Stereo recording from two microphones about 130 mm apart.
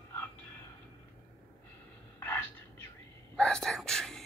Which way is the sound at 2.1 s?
20° left (ahead or behind).